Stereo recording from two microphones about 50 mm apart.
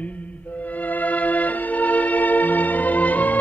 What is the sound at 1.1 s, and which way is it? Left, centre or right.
Music, left.